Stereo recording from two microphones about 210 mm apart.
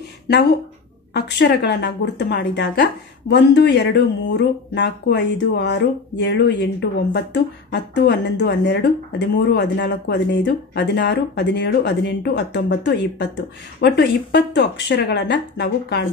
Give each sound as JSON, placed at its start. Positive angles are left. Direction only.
{"t": 1.1, "sound": "a woman's voice", "side_deg": 50}